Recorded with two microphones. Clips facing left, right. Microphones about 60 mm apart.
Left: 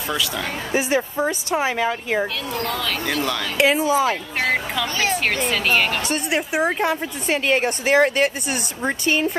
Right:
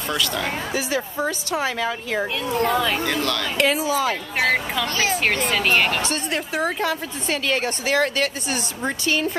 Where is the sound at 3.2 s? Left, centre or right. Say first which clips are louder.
Left 5 dB; centre.